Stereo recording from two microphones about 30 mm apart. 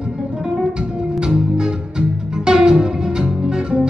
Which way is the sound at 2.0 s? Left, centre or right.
Right.